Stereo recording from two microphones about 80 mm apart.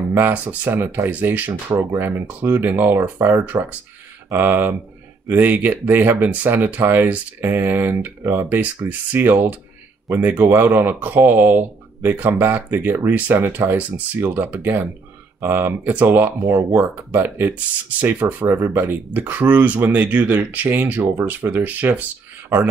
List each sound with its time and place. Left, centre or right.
0.1 s speech: right